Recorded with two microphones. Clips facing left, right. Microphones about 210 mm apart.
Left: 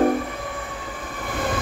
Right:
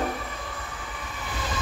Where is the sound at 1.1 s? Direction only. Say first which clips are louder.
Left 8 dB; 55° left (ahead or behind).